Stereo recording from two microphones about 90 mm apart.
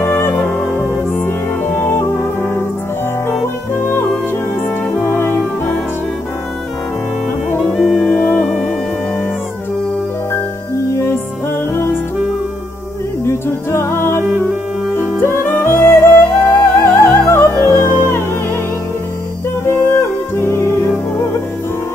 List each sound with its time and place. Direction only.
0.0 s music: 25° left (ahead or behind)
3.7 s music: 25° left (ahead or behind)
5.0 s music: 25° left (ahead or behind)
7.7 s music: 10° left (ahead or behind)
11.7 s music: 25° left (ahead or behind)
13.2 s music: 30° left (ahead or behind)
19.6 s music: 30° left (ahead or behind)